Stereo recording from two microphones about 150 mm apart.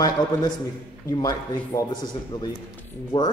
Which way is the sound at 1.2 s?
25° left (ahead or behind).